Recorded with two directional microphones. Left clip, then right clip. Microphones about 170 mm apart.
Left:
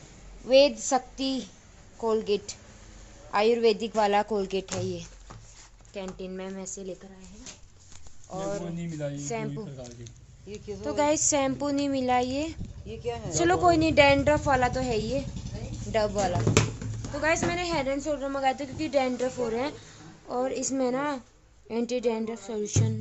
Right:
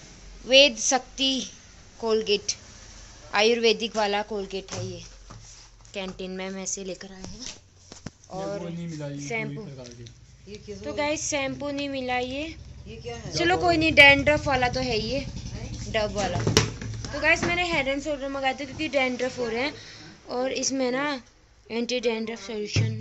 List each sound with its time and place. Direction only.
0.5 s a woman's voice: 5° left (ahead or behind); by 5.0 s 30° left (ahead or behind)
5.9 s a woman's voice: 5° right (ahead or behind)
8.3 s a woman's voice: 5° left (ahead or behind)
10.8 s a woman's voice: 25° left (ahead or behind)
12.8 s speech: 75° left (ahead or behind)
13.3 s a woman's voice: 15° left (ahead or behind)
15.9 s a woman's voice: 20° left (ahead or behind)
16.3 s a woman's voice: 5° left (ahead or behind)
22.6 s a woman's voice: 20° left (ahead or behind)